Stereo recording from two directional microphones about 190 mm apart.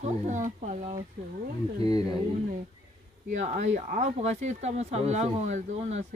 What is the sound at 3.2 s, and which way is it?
Speech, 40° right (ahead or behind).